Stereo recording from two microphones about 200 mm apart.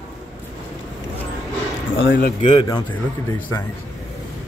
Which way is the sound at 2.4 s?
25° left (ahead or behind).